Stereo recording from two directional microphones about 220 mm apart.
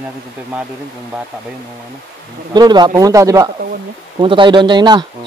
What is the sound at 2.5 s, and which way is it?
A man's voice, 20° right (ahead or behind).